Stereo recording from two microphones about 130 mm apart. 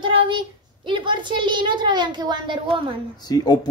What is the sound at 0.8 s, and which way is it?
A woman's voice, 40° right (ahead or behind).